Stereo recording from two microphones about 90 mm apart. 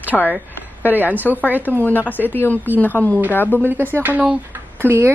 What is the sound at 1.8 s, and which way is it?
Speech, 20° left (ahead or behind).